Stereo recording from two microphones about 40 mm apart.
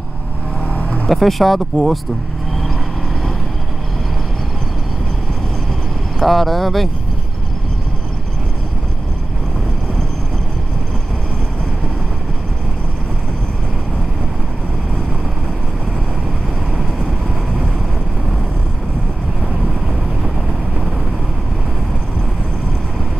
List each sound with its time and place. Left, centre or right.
0.7 s vehicle: left
1.0 s speech: centre
6.1 s speech: centre